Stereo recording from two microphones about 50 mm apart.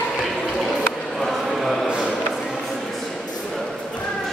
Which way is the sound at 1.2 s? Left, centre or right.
Centre.